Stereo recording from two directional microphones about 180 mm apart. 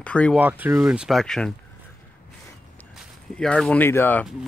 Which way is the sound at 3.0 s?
5° left (ahead or behind).